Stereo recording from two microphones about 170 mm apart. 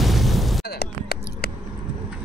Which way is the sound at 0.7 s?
65° left (ahead or behind).